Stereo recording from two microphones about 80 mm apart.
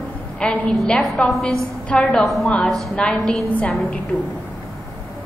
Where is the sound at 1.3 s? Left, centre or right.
Centre.